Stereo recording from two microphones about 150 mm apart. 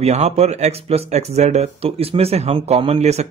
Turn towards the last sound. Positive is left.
turn(degrees=-45)  # may be behind; listen again after turning